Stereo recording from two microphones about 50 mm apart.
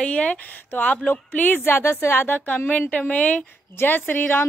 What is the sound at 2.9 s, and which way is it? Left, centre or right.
Speech, left.